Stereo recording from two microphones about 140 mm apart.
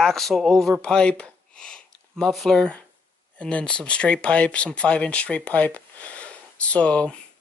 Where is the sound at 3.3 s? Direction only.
5° left (ahead or behind).